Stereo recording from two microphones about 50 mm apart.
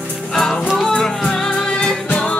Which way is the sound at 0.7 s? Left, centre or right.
Centre.